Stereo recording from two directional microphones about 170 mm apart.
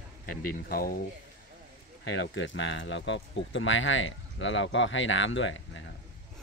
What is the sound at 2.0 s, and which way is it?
Speech, 90° left.